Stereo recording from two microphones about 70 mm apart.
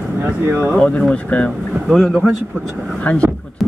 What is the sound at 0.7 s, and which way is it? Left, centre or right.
Speech, centre.